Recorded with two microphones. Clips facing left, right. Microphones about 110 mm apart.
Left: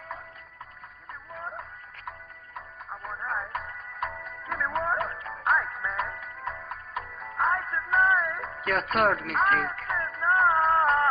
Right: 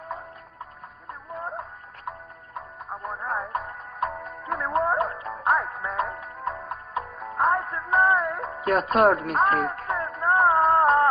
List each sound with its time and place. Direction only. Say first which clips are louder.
1.3 s music: right 5 dB; 30° right (ahead or behind)
8.8 s a man's voice: right 5 dB; 25° right (ahead or behind)
9.8 s music: right 3 dB; 40° right (ahead or behind)